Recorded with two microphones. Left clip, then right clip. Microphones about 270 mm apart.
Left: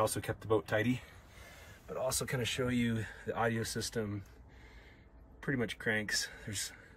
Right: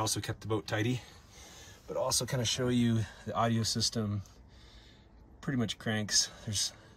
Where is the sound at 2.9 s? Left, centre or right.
Right.